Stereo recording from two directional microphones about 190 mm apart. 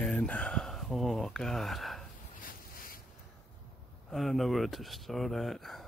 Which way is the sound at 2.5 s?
50° left (ahead or behind).